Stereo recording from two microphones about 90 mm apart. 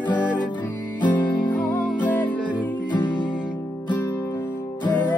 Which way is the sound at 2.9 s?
60° left (ahead or behind).